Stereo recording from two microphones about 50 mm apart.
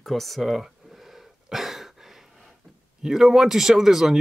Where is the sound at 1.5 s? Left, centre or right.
Centre.